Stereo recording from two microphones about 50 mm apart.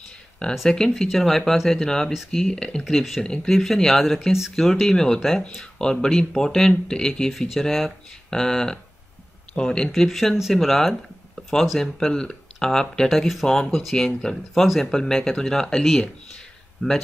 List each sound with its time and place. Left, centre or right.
0.7 s speech: centre
2.8 s speech: centre
9.9 s speech: centre
11.8 s speech: centre
15.8 s speech: centre
16.8 s speech: centre